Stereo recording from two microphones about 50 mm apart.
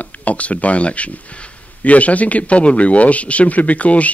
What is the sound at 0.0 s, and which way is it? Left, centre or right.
Speech, left.